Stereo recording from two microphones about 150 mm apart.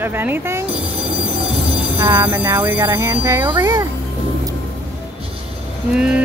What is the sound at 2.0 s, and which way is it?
Speech, 15° right (ahead or behind).